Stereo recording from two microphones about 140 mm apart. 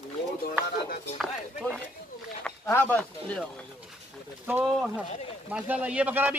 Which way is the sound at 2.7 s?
15° left (ahead or behind).